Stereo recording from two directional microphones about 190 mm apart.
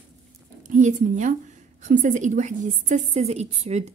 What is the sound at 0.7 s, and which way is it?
A woman's voice, 40° right (ahead or behind).